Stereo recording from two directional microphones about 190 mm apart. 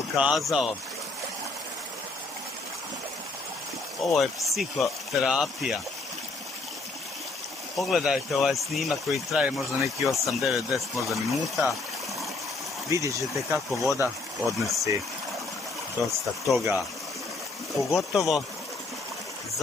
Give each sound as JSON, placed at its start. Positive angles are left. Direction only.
{"t": 0.2, "sound": "speech", "side_deg": 0}
{"t": 4.0, "sound": "speech", "side_deg": 0}
{"t": 7.7, "sound": "speech", "side_deg": 0}
{"t": 12.9, "sound": "speech", "side_deg": -15}
{"t": 14.4, "sound": "speech", "side_deg": 0}
{"t": 16.4, "sound": "speech", "side_deg": 0}